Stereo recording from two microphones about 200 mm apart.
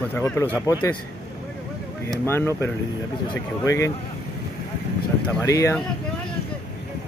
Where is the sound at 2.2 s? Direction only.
10° left (ahead or behind).